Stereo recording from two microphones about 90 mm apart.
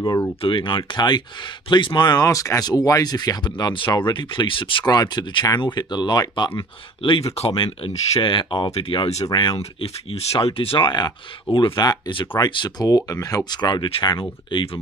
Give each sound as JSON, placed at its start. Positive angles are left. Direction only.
{"t": 0.4, "sound": "speech", "side_deg": 70}
{"t": 2.0, "sound": "speech", "side_deg": 40}
{"t": 4.8, "sound": "speech", "side_deg": 50}
{"t": 10.3, "sound": "speech", "side_deg": 90}
{"t": 13.5, "sound": "speech", "side_deg": 50}